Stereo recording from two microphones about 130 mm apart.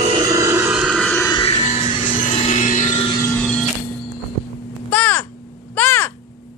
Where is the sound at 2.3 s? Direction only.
65° left (ahead or behind).